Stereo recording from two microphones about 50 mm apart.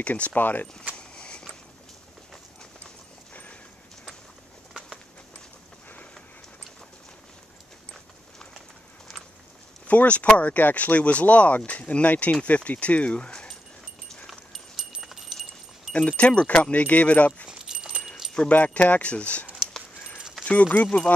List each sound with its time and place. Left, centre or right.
0.1 s speech: left
0.9 s a sound: left
8.5 s a sound: centre
9.8 s speech: left
14.5 s a sound: centre
15.9 s speech: left
17.5 s keys jangling: centre
18.5 s speech: left
20.4 s speech: left